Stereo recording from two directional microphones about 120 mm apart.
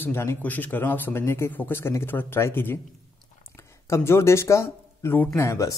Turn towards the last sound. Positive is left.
turn(degrees=25)  # may be behind; listen again after turning